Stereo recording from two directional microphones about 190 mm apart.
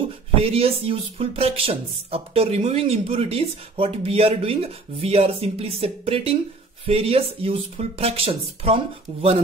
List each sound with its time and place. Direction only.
0.4 s speech: 30° right (ahead or behind)